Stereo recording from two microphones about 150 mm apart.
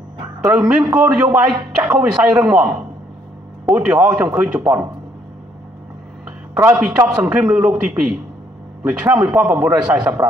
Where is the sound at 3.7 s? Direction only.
10° right (ahead or behind).